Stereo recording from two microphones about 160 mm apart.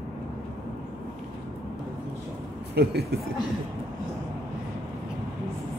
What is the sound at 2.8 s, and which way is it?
Speech, 85° right.